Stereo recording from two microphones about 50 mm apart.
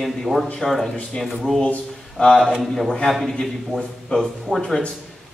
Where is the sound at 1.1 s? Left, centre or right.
Left.